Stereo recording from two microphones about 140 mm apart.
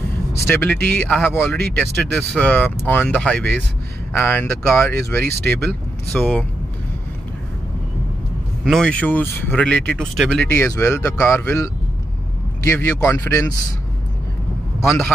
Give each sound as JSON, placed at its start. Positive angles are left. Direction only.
{"t": 0.3, "sound": "speech", "side_deg": 15}
{"t": 8.6, "sound": "speech", "side_deg": 5}
{"t": 10.4, "sound": "a man's voice", "side_deg": 15}